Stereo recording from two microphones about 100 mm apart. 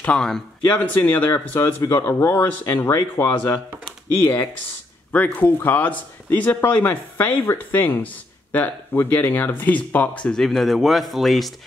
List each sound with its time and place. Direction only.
0.0 s speech: 5° left (ahead or behind)
0.7 s speech: 20° left (ahead or behind); by 11.5 s centre (ahead or behind)